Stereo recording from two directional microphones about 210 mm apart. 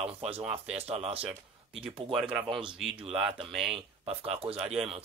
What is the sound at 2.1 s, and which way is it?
Speech, 5° right (ahead or behind).